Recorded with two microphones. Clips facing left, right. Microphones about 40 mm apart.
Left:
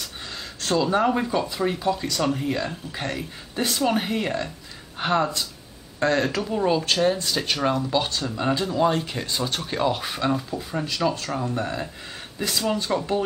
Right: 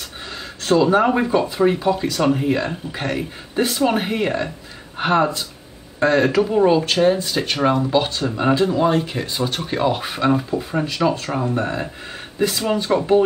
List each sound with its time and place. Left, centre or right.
0.6 s speech: centre